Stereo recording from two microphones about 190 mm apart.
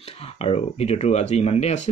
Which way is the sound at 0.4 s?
30° left (ahead or behind).